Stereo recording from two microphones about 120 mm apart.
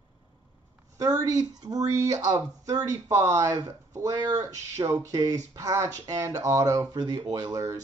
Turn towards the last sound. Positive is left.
turn(degrees=-30)  # may be behind; listen again after turning